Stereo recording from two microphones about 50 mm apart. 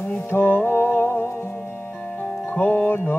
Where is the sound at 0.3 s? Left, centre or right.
Left.